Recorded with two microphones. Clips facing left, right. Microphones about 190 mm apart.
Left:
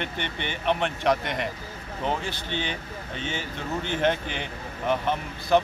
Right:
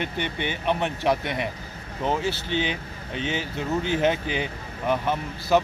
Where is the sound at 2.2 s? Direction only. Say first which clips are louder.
Right 5 dB; 50° left (ahead or behind).